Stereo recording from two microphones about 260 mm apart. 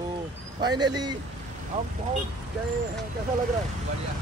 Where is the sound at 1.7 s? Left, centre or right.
Right.